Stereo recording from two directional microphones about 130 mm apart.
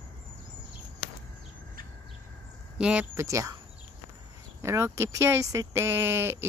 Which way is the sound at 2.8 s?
10° right (ahead or behind).